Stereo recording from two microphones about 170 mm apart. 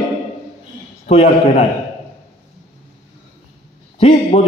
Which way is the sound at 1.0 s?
40° left (ahead or behind).